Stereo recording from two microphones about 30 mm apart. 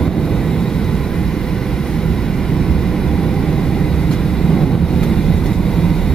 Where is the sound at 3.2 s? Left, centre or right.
Centre.